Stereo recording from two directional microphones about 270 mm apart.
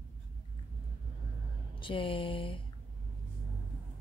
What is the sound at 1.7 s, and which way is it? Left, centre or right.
Speech, centre.